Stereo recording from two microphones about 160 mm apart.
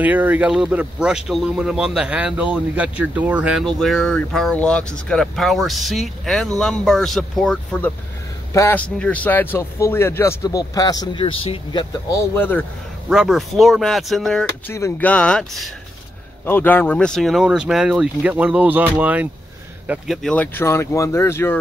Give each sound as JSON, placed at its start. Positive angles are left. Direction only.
{"t": 0.0, "sound": "speech", "side_deg": -10}
{"t": 12.1, "sound": "speech", "side_deg": 15}
{"t": 13.1, "sound": "speech", "side_deg": -5}
{"t": 14.7, "sound": "speech", "side_deg": 15}
{"t": 19.9, "sound": "speech", "side_deg": 0}